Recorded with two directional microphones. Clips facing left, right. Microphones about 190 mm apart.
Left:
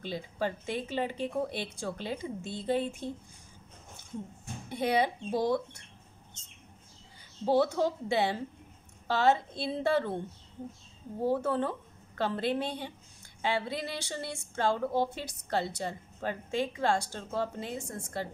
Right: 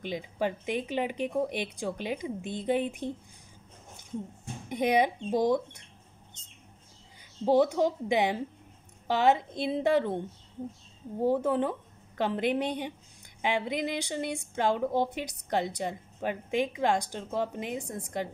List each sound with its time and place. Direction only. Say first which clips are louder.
0.0 s speech: right 2 dB; 15° right (ahead or behind)
4.6 s speech: right 3 dB; 15° right (ahead or behind)
7.4 s speech: right 3 dB; 15° right (ahead or behind)